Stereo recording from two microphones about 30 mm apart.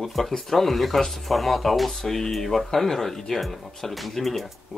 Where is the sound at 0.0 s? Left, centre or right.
Centre.